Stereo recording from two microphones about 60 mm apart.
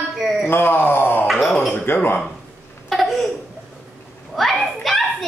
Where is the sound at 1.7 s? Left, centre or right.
Left.